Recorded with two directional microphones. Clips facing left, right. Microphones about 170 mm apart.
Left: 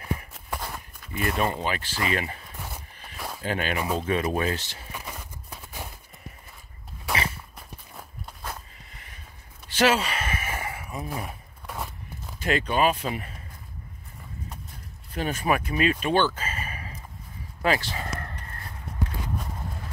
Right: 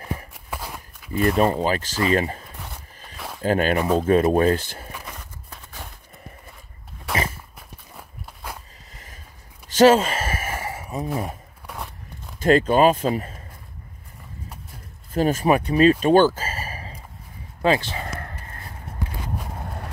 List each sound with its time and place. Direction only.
0.3 s walk: 10° right (ahead or behind)
1.1 s speech: 35° right (ahead or behind)
2.6 s a sound: 5° left (ahead or behind)
3.4 s speech: 40° right (ahead or behind)
4.9 s a sound: 10° left (ahead or behind)
7.1 s walk: centre (ahead or behind)
8.9 s a sound: 40° right (ahead or behind)
11.6 s walk: centre (ahead or behind)
12.4 s speech: 45° right (ahead or behind)
15.1 s speech: 40° right (ahead or behind)
17.6 s speech: 20° right (ahead or behind)
19.6 s a sound: 60° right (ahead or behind)